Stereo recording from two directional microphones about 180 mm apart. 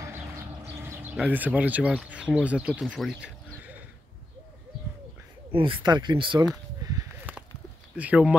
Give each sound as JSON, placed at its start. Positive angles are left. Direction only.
{"t": 0.0, "sound": "a sound", "side_deg": -15}
{"t": 5.5, "sound": "speech", "side_deg": -30}
{"t": 8.0, "sound": "speech", "side_deg": -10}